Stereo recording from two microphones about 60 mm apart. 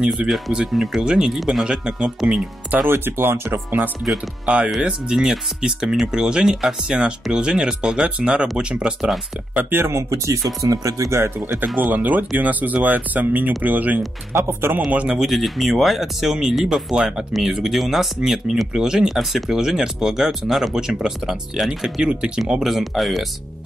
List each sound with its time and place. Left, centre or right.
0.1 s speech: centre
1.6 s speech: centre
2.9 s speech: right
4.8 s speech: centre
9.6 s speech: right
10.0 s speech: right
11.6 s speech: right
14.3 s speech: right
15.0 s speech: centre
22.5 s speech: centre